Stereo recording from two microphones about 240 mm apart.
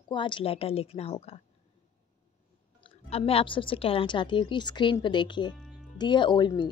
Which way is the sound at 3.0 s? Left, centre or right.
Left.